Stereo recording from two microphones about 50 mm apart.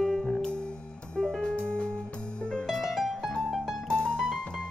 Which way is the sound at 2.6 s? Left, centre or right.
Centre.